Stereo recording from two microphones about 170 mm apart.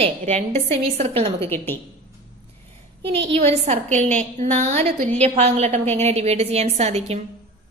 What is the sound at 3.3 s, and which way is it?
A woman's voice, 40° right (ahead or behind).